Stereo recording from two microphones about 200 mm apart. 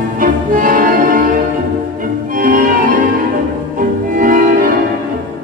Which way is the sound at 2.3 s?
40° right (ahead or behind).